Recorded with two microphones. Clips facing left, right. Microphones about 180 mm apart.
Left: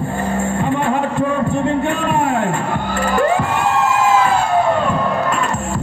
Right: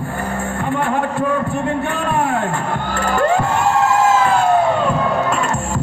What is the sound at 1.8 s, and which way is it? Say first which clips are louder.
Speech: left 2 dB; 15° left (ahead or behind).